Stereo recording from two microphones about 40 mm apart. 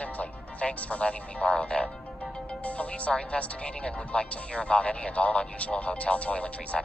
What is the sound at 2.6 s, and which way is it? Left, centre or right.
Speech, left.